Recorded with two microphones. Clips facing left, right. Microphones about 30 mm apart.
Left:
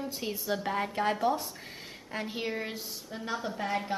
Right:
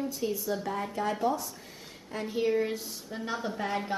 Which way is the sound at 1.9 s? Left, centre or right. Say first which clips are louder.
Right 1 dB; left.